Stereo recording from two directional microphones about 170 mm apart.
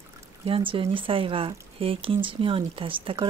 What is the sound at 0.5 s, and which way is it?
Speech, 30° right (ahead or behind).